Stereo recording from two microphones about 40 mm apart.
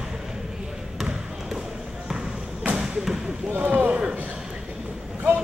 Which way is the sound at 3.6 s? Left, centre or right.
Right.